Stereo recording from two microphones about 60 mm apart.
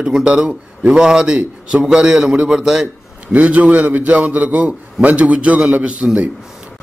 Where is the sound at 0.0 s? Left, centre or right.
Centre.